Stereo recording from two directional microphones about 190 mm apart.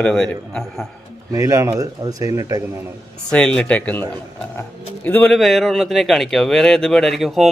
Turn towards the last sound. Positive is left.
turn(degrees=0)  # may be behind; listen again after turning